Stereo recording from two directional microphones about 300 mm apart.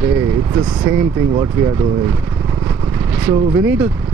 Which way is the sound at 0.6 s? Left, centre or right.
Centre.